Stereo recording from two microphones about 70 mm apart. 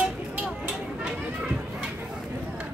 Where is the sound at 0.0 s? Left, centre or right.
Right.